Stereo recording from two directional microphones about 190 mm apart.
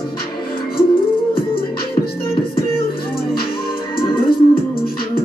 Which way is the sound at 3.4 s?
25° left (ahead or behind).